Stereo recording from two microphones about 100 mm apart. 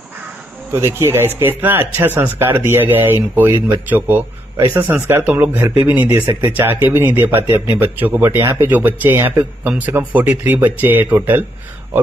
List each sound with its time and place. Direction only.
0.7 s speech: 25° right (ahead or behind)
4.6 s speech: 25° right (ahead or behind)